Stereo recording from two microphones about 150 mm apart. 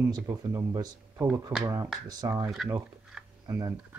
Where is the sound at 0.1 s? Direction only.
25° right (ahead or behind).